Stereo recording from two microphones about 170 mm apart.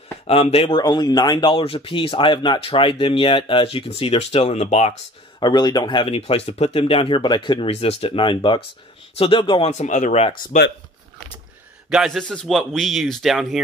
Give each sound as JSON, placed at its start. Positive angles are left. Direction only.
{"t": 0.3, "sound": "speech", "side_deg": 35}
{"t": 5.4, "sound": "speech", "side_deg": 25}
{"t": 11.9, "sound": "speech", "side_deg": 0}